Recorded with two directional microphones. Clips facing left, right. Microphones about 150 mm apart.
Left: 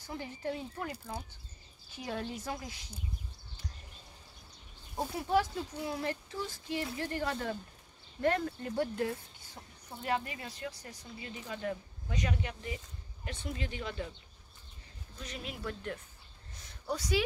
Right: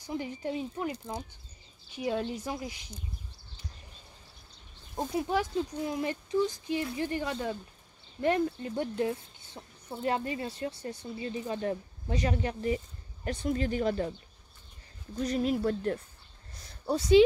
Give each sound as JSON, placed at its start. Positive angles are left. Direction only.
{"t": 0.0, "sound": "speech", "side_deg": -15}
{"t": 2.0, "sound": "speech", "side_deg": -20}
{"t": 5.1, "sound": "speech", "side_deg": -15}
{"t": 15.1, "sound": "speech", "side_deg": -40}
{"t": 16.8, "sound": "speech", "side_deg": -25}